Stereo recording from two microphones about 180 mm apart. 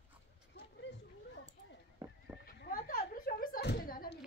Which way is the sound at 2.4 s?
55° left (ahead or behind).